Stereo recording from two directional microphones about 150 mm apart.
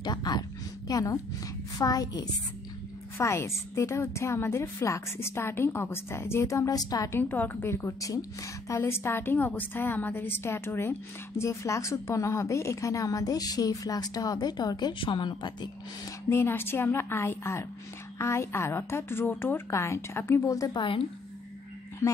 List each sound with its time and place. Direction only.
0.0 s a woman's voice: 25° left (ahead or behind)
16.3 s a woman's voice: 15° left (ahead or behind); by 21.0 s 30° left (ahead or behind)